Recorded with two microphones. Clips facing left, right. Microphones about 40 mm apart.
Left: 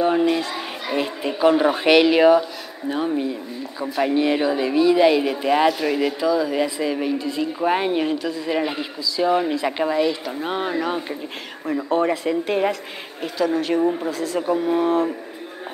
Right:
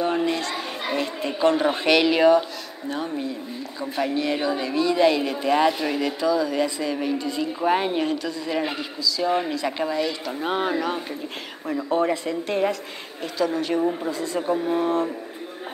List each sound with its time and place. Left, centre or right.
0.0 s a child's voice: centre
10.2 s speech: centre
14.6 s speech: centre